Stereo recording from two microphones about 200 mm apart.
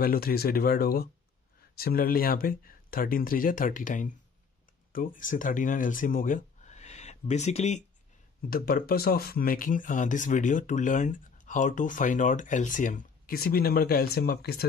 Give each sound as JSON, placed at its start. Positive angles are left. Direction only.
{"t": 0.0, "sound": "speech", "side_deg": 50}
{"t": 8.5, "sound": "speech", "side_deg": 50}